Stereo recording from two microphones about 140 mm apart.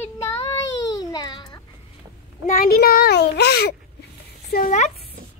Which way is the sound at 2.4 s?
80° left.